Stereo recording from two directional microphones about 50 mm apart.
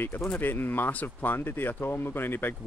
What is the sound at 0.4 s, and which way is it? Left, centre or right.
Speech, left.